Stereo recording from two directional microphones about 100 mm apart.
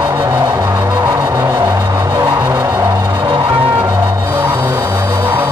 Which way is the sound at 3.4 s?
25° right (ahead or behind).